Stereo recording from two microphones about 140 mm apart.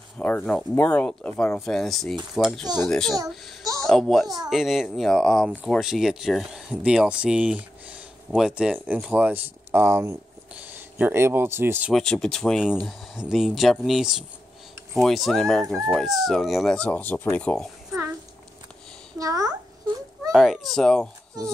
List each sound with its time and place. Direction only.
0.2 s speech: 10° left (ahead or behind); by 11.9 s 15° right (ahead or behind)
11.9 s speech: 5° left (ahead or behind)
19.1 s a child's voice: 25° right (ahead or behind)
20.3 s speech: centre (ahead or behind)